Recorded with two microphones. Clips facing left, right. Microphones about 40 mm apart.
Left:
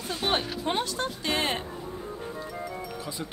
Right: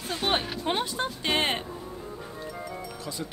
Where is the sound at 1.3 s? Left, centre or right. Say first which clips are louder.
Right 2 dB; right.